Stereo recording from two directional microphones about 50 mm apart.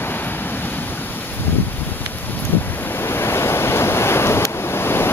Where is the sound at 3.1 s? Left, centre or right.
Left.